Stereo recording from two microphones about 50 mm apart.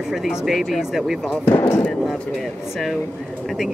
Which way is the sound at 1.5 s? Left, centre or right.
Left.